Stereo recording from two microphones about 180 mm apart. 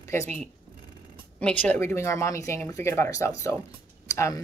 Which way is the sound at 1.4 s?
10° left (ahead or behind).